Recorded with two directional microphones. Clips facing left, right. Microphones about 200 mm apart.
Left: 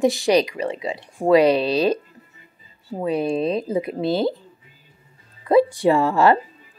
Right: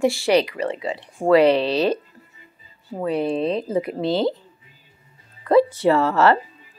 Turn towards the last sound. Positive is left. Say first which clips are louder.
# even
turn(degrees=15)  # may be behind; listen again after turning